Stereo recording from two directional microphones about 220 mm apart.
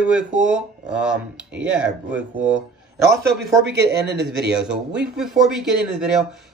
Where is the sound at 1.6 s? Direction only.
5° right (ahead or behind).